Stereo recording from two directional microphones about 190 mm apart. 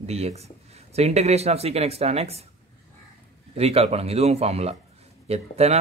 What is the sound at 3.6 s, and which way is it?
Speech, 35° right (ahead or behind).